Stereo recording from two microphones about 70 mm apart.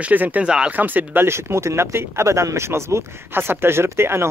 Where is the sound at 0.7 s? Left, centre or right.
Right.